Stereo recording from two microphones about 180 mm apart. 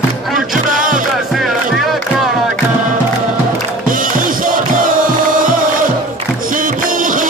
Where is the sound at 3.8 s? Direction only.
50° right (ahead or behind).